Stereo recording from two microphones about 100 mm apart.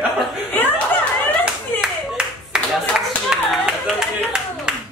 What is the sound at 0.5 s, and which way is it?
Chuckle, 20° left (ahead or behind).